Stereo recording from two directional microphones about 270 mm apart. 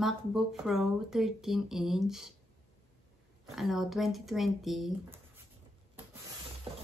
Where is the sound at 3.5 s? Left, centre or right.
Centre.